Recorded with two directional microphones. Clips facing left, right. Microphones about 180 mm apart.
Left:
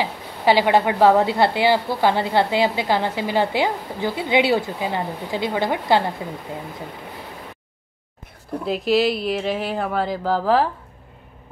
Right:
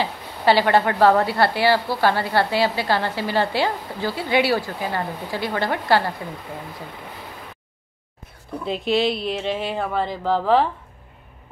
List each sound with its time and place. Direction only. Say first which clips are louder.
0.0 s a woman's voice: even; 15° left (ahead or behind)
8.6 s speech: left 2 dB; 5° left (ahead or behind)